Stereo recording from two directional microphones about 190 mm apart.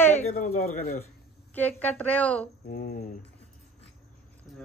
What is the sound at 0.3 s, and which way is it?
Speech, 45° left (ahead or behind).